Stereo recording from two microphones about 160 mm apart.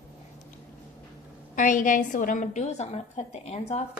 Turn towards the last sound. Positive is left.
turn(degrees=40)  # may be behind; listen again after turning